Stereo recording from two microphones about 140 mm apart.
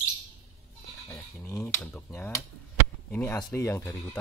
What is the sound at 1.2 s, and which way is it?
Speech, 20° left (ahead or behind).